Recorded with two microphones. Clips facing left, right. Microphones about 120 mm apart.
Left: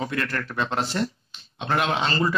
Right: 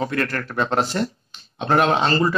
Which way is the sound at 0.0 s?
45° right (ahead or behind).